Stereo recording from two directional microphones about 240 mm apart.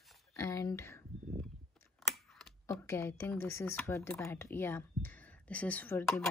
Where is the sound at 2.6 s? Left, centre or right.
Centre.